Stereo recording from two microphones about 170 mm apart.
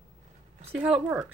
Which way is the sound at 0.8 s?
5° right (ahead or behind).